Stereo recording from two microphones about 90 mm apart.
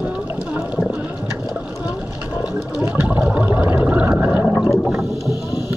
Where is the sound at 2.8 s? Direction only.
20° right (ahead or behind).